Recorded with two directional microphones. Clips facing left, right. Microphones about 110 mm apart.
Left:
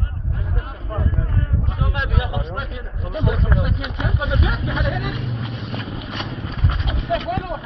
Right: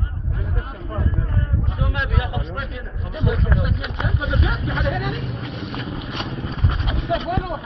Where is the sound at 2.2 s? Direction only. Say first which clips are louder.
Left 1 dB; 20° left (ahead or behind).